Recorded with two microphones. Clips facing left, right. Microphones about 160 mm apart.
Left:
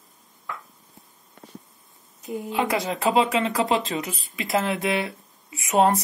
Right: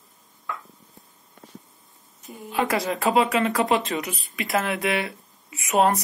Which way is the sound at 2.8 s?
20° left (ahead or behind).